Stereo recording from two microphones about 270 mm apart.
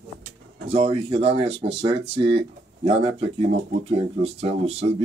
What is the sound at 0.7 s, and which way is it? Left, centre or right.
Speech, right.